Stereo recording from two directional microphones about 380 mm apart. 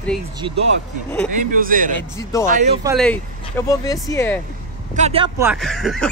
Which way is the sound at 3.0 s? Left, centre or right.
Centre.